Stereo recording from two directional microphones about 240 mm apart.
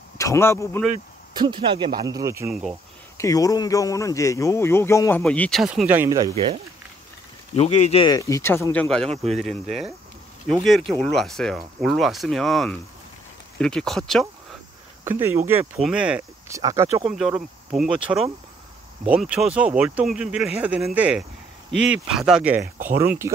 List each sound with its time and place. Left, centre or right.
0.2 s speech: centre
1.3 s speech: centre
3.2 s speech: centre; by 6.6 s right
7.5 s speech: left; by 14.2 s centre
15.0 s speech: centre
17.0 s speech: centre